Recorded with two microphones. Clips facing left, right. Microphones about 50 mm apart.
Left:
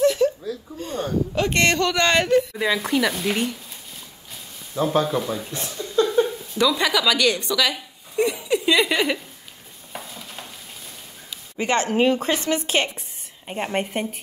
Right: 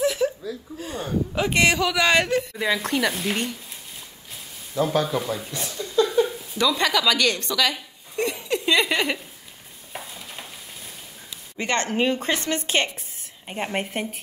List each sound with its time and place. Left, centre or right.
0.0 s a sound: centre
0.7 s a man's voice: centre
5.0 s speech: centre
5.5 s speech: left
6.6 s speech: centre
9.9 s stir: centre
11.5 s speech: centre